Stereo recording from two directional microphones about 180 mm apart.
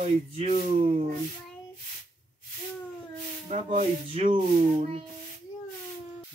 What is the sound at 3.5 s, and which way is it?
Speech, 40° right (ahead or behind).